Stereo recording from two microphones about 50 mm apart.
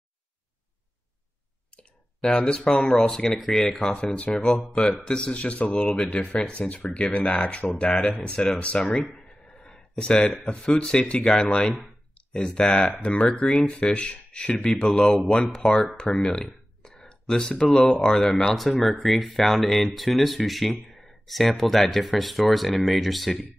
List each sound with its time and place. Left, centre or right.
1.8 s speech: centre